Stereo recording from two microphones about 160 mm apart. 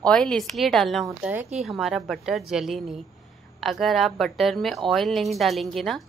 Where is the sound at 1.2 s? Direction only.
10° right (ahead or behind).